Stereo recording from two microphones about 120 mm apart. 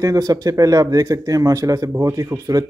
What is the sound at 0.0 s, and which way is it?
Speech, 30° right (ahead or behind).